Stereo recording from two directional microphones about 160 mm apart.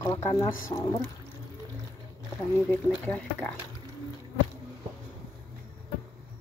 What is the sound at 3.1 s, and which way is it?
Speech, 10° left (ahead or behind).